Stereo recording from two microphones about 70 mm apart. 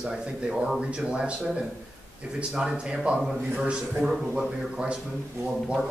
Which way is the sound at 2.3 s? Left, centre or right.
Centre.